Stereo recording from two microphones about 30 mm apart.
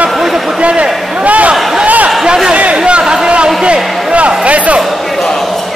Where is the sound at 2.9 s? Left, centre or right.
Right.